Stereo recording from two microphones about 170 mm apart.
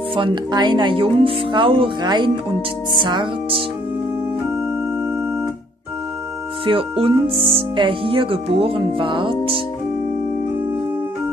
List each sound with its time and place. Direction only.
0.1 s speech: 30° right (ahead or behind)
6.6 s speech: 30° right (ahead or behind)